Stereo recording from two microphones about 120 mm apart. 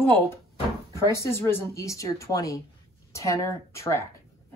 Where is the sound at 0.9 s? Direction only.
20° left (ahead or behind).